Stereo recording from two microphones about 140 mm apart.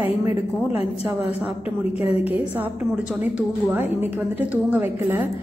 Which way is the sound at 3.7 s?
15° right (ahead or behind).